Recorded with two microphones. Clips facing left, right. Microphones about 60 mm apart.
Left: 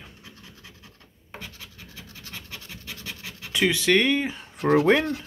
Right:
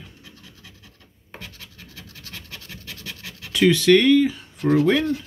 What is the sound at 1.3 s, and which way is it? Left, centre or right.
Scratch, centre.